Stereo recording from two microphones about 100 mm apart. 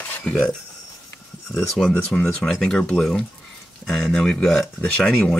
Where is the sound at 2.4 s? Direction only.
5° left (ahead or behind).